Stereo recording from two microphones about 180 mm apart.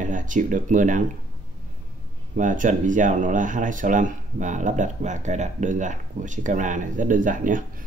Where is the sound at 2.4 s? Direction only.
45° right (ahead or behind).